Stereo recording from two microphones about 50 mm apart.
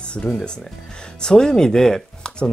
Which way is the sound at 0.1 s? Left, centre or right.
Centre.